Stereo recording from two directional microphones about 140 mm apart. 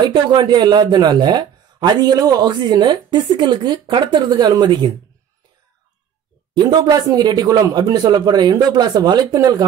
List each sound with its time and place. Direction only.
0.0 s speech: 35° right (ahead or behind)
6.5 s speech: 30° right (ahead or behind)